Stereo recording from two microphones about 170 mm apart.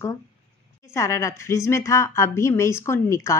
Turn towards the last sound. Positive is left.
turn(degrees=20)  # may be behind; listen again after turning